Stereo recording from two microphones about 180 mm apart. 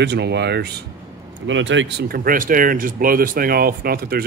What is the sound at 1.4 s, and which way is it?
Speech, 90° right.